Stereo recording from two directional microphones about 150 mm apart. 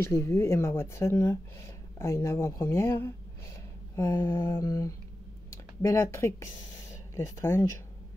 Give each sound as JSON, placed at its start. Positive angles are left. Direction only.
{"t": 0.0, "sound": "speech", "side_deg": 15}
{"t": 3.9, "sound": "a sound", "side_deg": 15}
{"t": 5.5, "sound": "speech", "side_deg": 20}